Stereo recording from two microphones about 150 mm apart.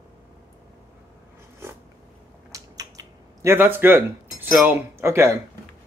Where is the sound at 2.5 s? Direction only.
25° right (ahead or behind).